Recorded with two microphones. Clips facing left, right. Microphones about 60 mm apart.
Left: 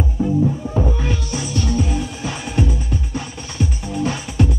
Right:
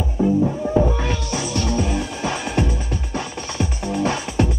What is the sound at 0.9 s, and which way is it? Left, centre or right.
Music, right.